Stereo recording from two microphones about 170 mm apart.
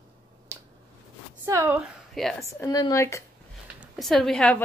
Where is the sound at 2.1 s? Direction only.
Centre (ahead or behind).